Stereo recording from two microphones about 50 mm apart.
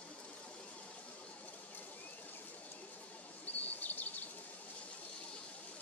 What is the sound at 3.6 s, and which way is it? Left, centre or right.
Bird vocalization, left.